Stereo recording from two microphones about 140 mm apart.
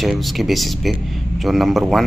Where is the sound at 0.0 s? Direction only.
Centre (ahead or behind).